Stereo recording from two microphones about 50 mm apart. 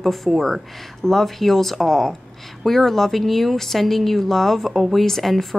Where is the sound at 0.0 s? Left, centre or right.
Centre.